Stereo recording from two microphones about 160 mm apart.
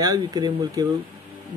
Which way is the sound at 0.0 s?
25° right (ahead or behind).